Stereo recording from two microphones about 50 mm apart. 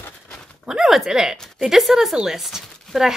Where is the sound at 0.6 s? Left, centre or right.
Centre.